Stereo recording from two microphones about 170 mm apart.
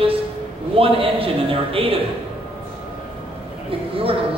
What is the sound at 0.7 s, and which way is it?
A man's voice, 30° right (ahead or behind).